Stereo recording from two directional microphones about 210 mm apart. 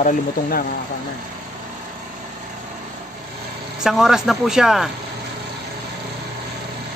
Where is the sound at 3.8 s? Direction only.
Centre (ahead or behind).